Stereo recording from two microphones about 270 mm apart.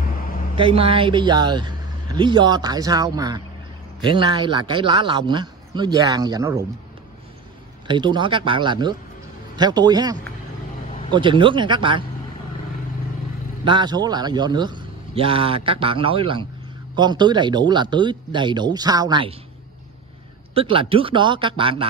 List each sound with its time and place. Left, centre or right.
0.6 s speech: centre
7.9 s speech: centre
13.7 s speech: centre
20.5 s speech: centre